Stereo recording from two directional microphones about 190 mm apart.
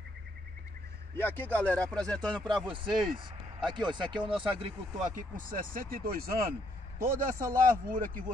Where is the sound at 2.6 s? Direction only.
25° right (ahead or behind).